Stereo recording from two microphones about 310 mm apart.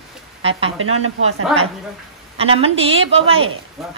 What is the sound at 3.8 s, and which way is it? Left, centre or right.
Speech, centre.